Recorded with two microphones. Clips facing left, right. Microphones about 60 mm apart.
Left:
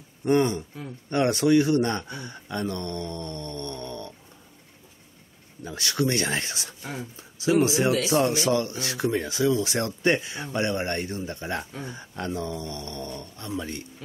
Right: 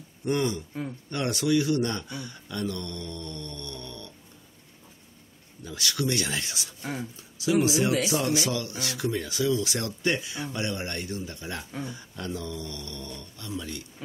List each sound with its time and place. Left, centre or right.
0.2 s speech: left
5.6 s speech: left